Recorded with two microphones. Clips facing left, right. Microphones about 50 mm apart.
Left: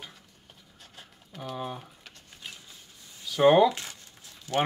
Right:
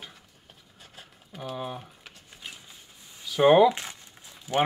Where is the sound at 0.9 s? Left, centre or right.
Centre.